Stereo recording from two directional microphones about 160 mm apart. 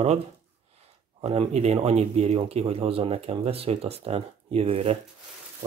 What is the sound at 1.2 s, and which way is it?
Speech, 40° right (ahead or behind).